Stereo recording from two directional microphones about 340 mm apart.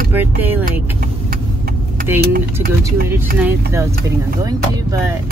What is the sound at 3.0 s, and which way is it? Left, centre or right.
Speech, centre.